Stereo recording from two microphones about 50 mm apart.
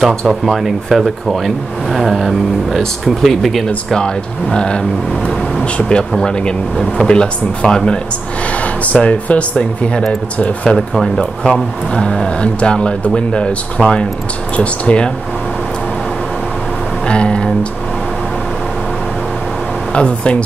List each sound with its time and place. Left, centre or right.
0.3 s speech: centre
3.6 s speech: centre
8.8 s speech: left
9.6 s speech: centre
17.1 s speech: centre
19.9 s speech: left